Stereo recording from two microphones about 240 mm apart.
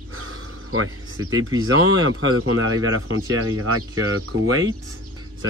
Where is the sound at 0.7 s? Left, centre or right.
Right.